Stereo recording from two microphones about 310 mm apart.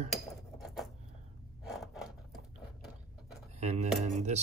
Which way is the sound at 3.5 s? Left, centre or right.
Right.